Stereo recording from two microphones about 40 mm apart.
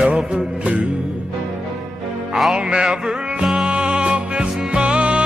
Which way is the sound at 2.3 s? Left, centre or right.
Centre.